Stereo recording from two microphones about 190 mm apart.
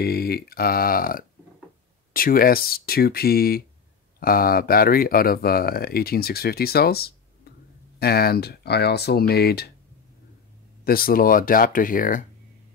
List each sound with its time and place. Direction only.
0.0 s speech: 55° left (ahead or behind)
10.9 s speech: 50° left (ahead or behind)